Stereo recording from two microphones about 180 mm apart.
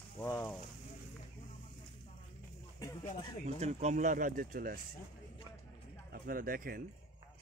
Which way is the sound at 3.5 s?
35° right (ahead or behind).